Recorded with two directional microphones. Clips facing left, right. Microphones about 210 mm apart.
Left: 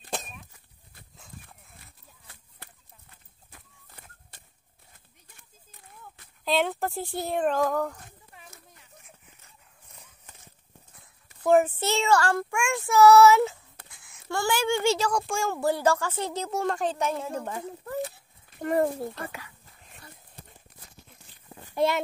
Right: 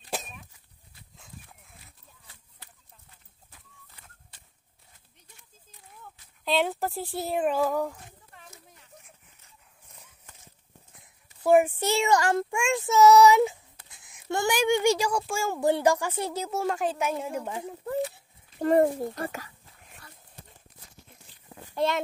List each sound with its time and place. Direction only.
0.1 s a sound: centre (ahead or behind)
1.1 s dog: centre (ahead or behind)
3.5 s chicken: 50° left (ahead or behind)
6.4 s speech: centre (ahead or behind)
11.4 s a woman's voice: 10° right (ahead or behind)
15.6 s a woman's voice: 15° right (ahead or behind)
18.1 s a sound: 25° right (ahead or behind)
19.1 s speech: 40° right (ahead or behind)
21.7 s speech: 10° left (ahead or behind)